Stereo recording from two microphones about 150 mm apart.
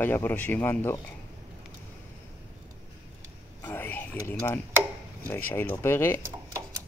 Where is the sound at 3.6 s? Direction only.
15° left (ahead or behind).